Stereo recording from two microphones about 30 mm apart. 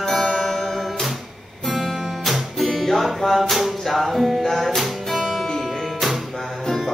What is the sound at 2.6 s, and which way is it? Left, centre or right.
Music, centre.